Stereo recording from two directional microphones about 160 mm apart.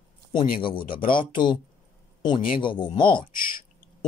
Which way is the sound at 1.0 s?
30° left (ahead or behind).